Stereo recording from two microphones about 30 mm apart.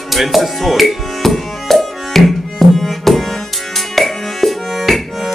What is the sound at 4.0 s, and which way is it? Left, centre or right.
Music, centre.